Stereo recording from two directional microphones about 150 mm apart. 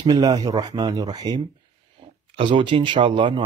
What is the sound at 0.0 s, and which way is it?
Speech, 25° right (ahead or behind).